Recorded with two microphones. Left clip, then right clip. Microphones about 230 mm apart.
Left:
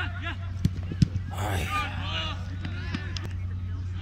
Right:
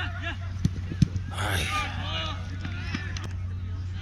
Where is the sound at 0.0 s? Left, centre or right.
Centre.